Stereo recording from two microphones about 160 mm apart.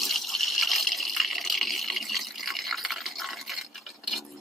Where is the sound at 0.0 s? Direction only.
Centre (ahead or behind).